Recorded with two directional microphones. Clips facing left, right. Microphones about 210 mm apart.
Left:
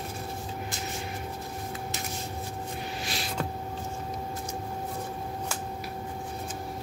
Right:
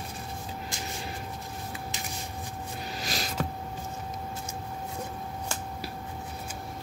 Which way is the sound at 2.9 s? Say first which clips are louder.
Even; 40° right (ahead or behind).